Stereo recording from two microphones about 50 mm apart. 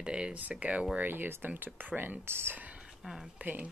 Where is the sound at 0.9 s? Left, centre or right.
Right.